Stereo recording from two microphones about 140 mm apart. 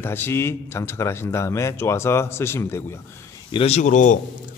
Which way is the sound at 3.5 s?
50° left (ahead or behind).